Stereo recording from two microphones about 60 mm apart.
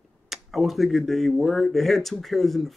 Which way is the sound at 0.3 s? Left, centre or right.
Centre.